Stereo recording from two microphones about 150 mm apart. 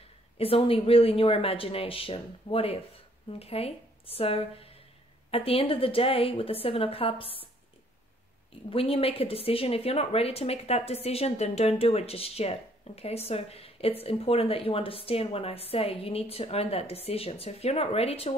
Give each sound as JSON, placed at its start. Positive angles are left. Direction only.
{"t": 0.4, "sound": "speech", "side_deg": 40}
{"t": 8.6, "sound": "speech", "side_deg": 40}